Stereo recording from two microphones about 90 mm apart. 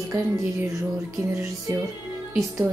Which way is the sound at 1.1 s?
35° right (ahead or behind).